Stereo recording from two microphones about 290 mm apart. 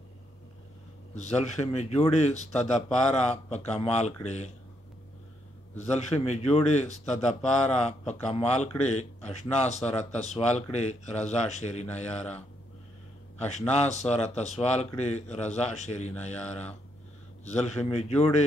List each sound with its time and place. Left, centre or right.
1.1 s speech: left
5.8 s speech: left
13.4 s speech: left